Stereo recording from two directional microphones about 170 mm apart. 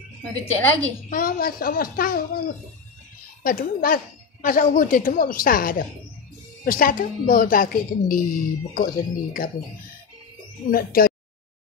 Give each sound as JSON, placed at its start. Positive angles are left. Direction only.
{"t": 0.3, "sound": "a woman's voice", "side_deg": 10}
{"t": 1.1, "sound": "a woman's voice", "side_deg": 55}
{"t": 10.7, "sound": "a woman's voice", "side_deg": 60}